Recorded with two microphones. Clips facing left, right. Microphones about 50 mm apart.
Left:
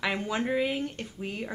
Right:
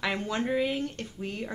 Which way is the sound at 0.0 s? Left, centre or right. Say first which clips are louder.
Even; centre.